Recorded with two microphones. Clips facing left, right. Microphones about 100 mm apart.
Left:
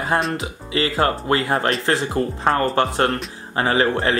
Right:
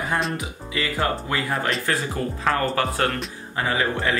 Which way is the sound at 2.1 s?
30° left (ahead or behind).